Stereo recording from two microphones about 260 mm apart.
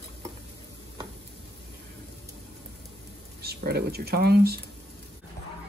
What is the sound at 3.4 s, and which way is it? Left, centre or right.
Speech, right.